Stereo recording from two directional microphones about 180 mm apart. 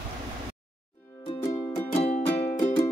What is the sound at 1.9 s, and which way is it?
Music, 35° left (ahead or behind).